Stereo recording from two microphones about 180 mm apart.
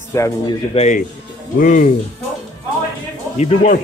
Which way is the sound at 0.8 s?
40° left (ahead or behind).